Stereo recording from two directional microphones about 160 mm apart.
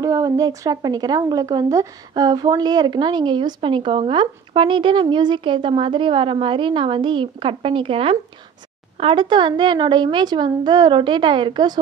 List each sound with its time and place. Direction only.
0.0 s a woman's voice: 20° right (ahead or behind)